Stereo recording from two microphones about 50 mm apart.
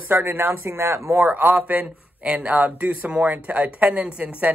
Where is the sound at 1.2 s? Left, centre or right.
Right.